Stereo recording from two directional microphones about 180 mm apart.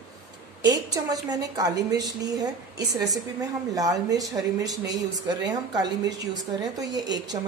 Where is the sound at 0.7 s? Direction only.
20° right (ahead or behind).